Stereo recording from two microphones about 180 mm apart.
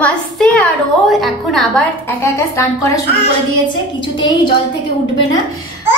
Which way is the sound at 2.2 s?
15° left (ahead or behind).